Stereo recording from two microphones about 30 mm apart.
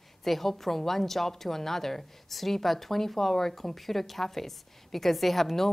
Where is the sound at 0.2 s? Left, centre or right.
Centre.